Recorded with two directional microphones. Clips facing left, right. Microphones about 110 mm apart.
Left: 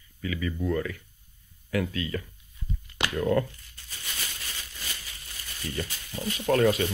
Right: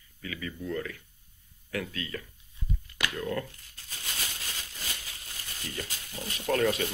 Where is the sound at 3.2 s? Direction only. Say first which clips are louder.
Left 9 dB; 35° left (ahead or behind).